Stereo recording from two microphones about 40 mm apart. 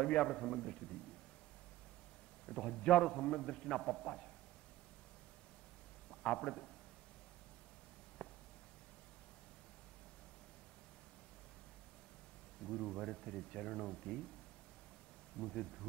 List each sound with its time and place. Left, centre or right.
0.0 s a man's voice: centre
2.4 s a man's voice: centre
6.0 s a man's voice: centre
8.2 s a sound: left
12.6 s a man's voice: centre
13.9 s speech: left
15.3 s a man's voice: centre